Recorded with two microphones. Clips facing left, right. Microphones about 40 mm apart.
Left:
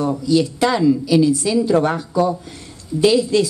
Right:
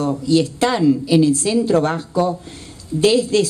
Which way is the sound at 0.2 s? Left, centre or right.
Right.